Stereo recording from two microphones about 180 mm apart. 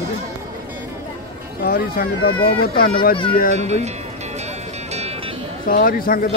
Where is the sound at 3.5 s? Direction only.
40° right (ahead or behind).